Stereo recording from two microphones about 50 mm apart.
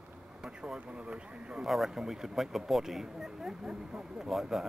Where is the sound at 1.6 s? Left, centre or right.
Centre.